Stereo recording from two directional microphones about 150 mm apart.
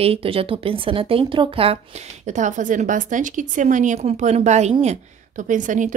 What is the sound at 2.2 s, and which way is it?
Speech, 55° right (ahead or behind).